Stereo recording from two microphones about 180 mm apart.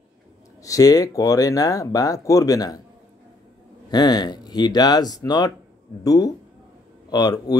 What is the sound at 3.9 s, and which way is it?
Speech, 20° left (ahead or behind).